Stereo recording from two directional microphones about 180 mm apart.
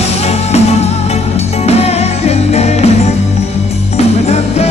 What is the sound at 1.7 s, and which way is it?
Music, 35° left (ahead or behind).